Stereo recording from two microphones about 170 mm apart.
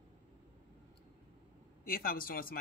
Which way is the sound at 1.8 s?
55° left (ahead or behind).